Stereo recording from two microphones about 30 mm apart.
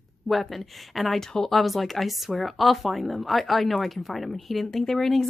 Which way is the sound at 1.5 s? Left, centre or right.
Centre.